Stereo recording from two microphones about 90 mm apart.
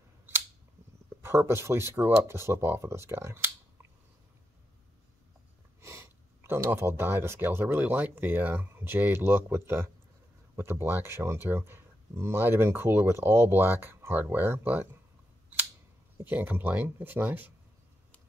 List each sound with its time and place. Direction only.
1.2 s speech: 30° right (ahead or behind)
5.8 s speech: 30° right (ahead or behind)
16.2 s speech: 20° right (ahead or behind)